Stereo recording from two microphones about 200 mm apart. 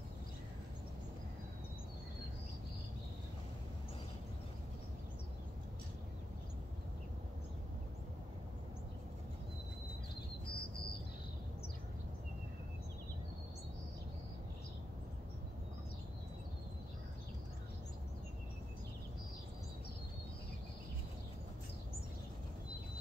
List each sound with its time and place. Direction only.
10.5 s cricket: 50° left (ahead or behind)